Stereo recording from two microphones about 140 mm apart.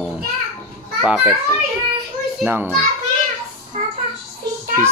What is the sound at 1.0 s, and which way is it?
Speech, 10° right (ahead or behind).